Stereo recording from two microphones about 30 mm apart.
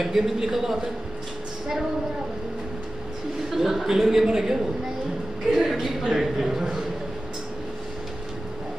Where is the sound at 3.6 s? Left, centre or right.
Centre.